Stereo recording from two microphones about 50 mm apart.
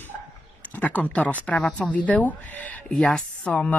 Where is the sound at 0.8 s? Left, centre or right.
Left.